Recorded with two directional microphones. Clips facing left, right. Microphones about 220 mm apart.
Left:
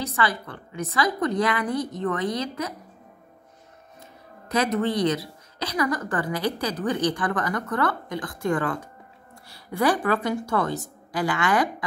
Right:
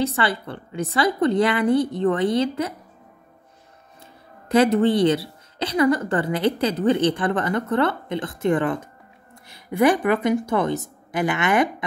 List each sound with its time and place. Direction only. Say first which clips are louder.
0.0 s a woman's voice: right 4 dB; 30° right (ahead or behind)
4.5 s a woman's voice: right 7 dB; 30° right (ahead or behind)